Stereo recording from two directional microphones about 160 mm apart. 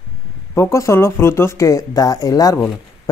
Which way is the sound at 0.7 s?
15° left (ahead or behind).